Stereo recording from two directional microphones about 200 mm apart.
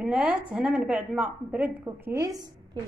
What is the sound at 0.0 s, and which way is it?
A woman's voice, 5° right (ahead or behind).